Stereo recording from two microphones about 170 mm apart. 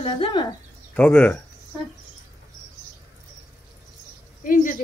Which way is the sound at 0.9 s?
10° left (ahead or behind).